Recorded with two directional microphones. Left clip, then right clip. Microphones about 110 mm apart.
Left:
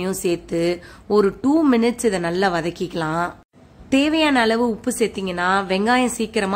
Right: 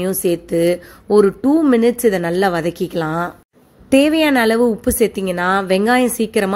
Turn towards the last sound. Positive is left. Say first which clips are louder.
# right 4 dB
turn(degrees=-40)  # may be behind; listen again after turning